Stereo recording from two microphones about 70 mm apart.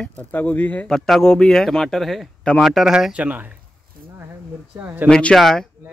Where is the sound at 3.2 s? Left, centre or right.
Right.